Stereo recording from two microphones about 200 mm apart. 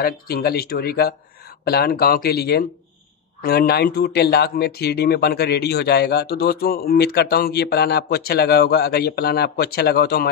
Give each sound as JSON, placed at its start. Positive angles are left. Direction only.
{"t": 0.0, "sound": "speech", "side_deg": 50}